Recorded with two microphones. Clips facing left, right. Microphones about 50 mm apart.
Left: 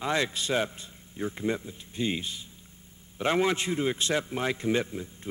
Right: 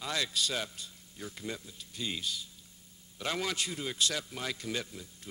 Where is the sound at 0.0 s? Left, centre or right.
Left.